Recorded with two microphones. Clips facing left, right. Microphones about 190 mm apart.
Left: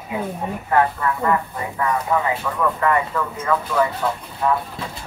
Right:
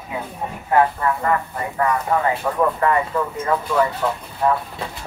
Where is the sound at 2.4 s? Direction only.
40° right (ahead or behind).